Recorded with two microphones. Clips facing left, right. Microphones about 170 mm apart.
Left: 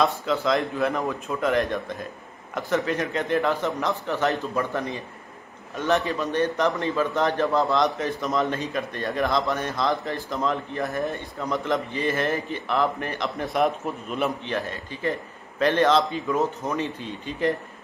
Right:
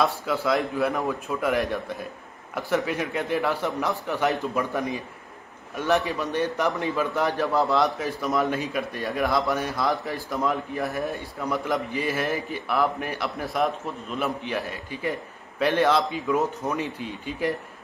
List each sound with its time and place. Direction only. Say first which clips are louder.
0.5 s a man's voice: right 1 dB; 5° right (ahead or behind)
7.2 s a man's voice: left 1 dB; 5° right (ahead or behind)
14.4 s speech: left 1 dB; 10° right (ahead or behind)